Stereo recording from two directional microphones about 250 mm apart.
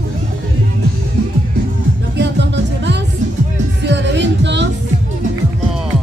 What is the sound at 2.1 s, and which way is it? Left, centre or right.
Music, right.